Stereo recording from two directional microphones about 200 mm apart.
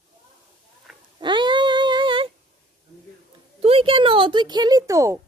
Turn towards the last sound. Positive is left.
turn(degrees=-15)  # may be behind; listen again after turning